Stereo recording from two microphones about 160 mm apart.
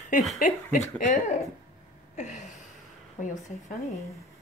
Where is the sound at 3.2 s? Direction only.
55° left (ahead or behind).